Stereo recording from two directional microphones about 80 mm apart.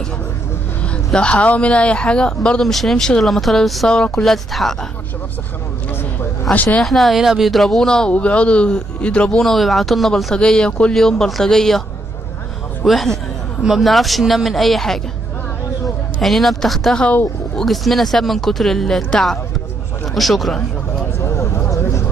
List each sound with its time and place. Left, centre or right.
1.1 s speech: centre
6.5 s speech: left
6.8 s speech: centre
12.8 s speech: centre
16.2 s speech: centre
17.0 s speech: centre
17.6 s speech: centre
21.2 s a sound: left